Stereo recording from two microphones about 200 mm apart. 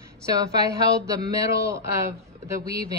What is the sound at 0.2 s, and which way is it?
Speech, 15° right (ahead or behind).